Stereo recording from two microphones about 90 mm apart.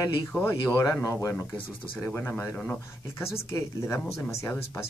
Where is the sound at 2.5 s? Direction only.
20° left (ahead or behind).